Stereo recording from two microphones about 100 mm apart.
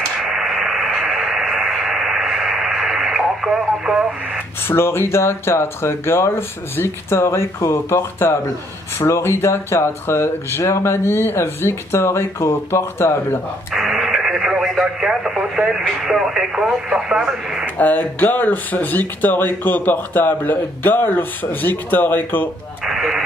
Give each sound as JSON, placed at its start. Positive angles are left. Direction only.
{"t": 0.2, "sound": "radio", "side_deg": -5}
{"t": 4.6, "sound": "speech", "side_deg": 25}
{"t": 13.7, "sound": "radio", "side_deg": -5}
{"t": 15.8, "sound": "speech", "side_deg": -5}
{"t": 17.7, "sound": "speech", "side_deg": 15}
{"t": 22.8, "sound": "radio", "side_deg": -5}